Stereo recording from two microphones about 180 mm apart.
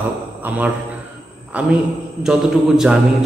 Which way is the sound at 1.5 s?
5° right (ahead or behind).